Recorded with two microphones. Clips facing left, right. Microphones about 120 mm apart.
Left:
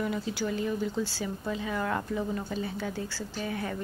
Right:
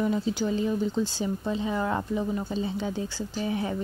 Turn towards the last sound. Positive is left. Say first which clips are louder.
# right 4 dB
turn(degrees=-20)  # may be behind; listen again after turning